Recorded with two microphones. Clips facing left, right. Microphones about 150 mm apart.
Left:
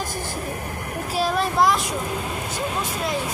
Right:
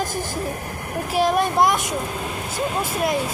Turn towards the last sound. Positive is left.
turn(degrees=-20)  # may be behind; listen again after turning